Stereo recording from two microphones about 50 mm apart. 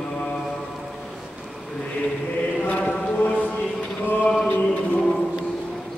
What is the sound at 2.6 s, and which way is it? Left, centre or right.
Chant, left.